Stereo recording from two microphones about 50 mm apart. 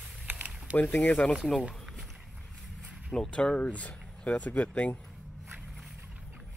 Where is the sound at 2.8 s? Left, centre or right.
Centre.